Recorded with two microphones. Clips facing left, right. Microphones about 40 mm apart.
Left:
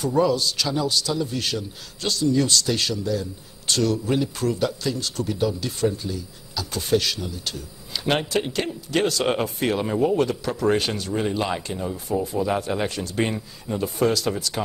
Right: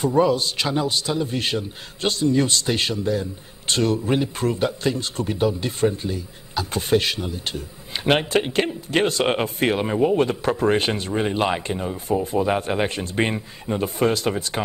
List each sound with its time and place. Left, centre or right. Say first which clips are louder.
0.0 s a man's voice: right 2 dB; right